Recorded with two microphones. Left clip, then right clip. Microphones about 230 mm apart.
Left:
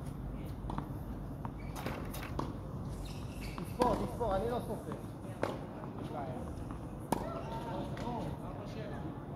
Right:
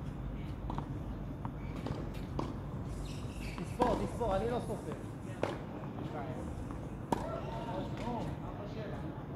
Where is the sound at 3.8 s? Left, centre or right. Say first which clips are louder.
Even; left.